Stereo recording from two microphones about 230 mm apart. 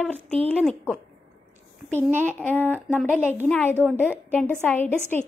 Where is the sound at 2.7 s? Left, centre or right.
Centre.